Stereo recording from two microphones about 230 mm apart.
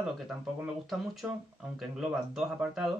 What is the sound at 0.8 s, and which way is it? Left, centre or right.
Speech, centre.